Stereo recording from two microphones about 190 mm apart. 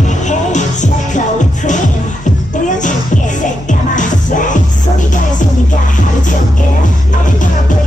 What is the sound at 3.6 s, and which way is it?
Music, 40° left (ahead or behind).